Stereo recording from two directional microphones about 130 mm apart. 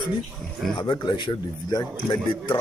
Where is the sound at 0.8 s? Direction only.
35° left (ahead or behind).